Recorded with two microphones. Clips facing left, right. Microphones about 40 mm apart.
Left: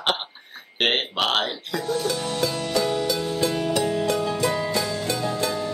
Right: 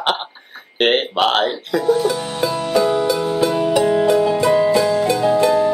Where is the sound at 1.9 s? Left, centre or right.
Centre.